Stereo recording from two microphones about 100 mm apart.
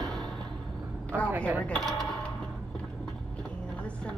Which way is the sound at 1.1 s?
20° right (ahead or behind).